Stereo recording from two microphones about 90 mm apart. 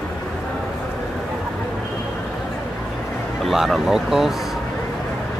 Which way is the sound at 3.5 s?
Centre (ahead or behind).